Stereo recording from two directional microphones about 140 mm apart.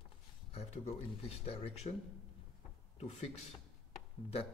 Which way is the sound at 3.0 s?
50° left (ahead or behind).